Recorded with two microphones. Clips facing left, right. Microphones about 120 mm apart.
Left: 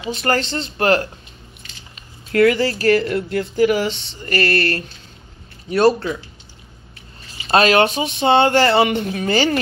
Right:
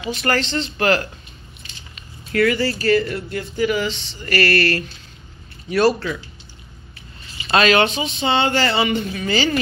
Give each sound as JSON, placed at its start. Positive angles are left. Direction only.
{"t": 0.0, "sound": "speech", "side_deg": 30}
{"t": 2.3, "sound": "speech", "side_deg": 65}
{"t": 4.2, "sound": "speech", "side_deg": 30}
{"t": 7.4, "sound": "speech", "side_deg": 40}